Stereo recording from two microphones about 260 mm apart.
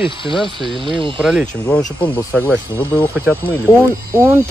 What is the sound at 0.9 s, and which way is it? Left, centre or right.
Speech, centre.